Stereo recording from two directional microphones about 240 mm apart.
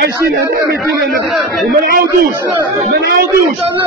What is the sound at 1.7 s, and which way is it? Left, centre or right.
Speech, right.